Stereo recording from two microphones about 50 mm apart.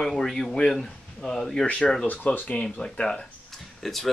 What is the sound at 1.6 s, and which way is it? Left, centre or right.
Speech, left.